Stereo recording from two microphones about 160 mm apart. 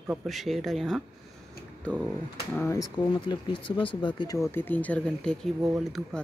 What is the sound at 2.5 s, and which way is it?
Speech, 15° left (ahead or behind).